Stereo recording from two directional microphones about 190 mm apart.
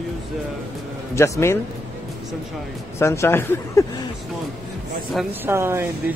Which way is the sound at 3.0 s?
15° left (ahead or behind).